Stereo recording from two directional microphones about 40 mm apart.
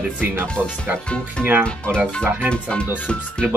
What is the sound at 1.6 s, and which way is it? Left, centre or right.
Speech, right.